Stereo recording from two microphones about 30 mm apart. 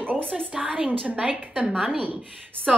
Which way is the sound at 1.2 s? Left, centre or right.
Right.